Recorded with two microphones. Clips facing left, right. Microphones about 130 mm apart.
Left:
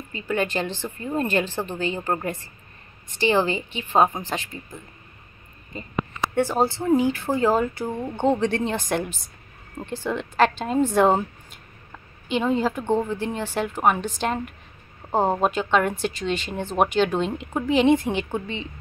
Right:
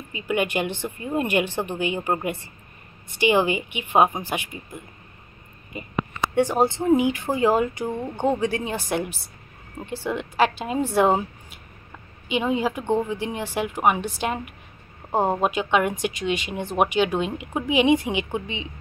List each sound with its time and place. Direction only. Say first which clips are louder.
0.1 s a woman's voice: right 1 dB; 15° right (ahead or behind)
5.7 s a woman's voice: right 1 dB; 10° right (ahead or behind)